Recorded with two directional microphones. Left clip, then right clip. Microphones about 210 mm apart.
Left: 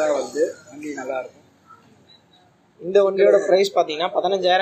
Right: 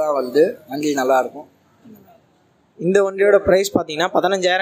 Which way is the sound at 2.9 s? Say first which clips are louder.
Right 1 dB; 50° right (ahead or behind).